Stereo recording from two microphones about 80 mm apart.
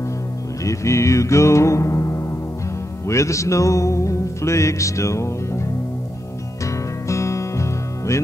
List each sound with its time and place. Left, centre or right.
0.7 s music: left
6.6 s music: left